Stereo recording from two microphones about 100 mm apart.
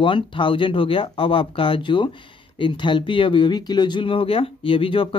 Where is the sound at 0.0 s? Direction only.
55° left (ahead or behind).